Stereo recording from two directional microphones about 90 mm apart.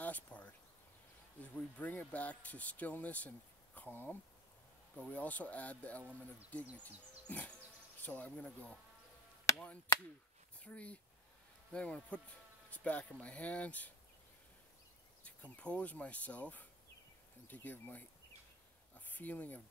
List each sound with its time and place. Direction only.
0.0 s a sound: 15° left (ahead or behind)
1.4 s speech: 15° left (ahead or behind)
10.6 s speech: 15° left (ahead or behind)
15.2 s speech: 15° left (ahead or behind)